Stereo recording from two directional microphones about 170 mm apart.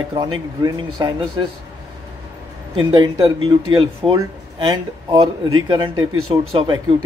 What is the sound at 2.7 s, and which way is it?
Speech, 30° right (ahead or behind).